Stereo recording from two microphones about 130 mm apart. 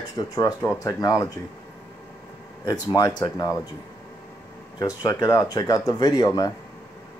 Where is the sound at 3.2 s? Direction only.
30° left (ahead or behind).